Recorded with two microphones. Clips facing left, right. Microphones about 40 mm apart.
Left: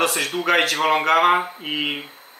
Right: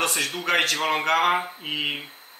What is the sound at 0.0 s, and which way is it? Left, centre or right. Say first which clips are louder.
A man's voice: left 4 dB; centre.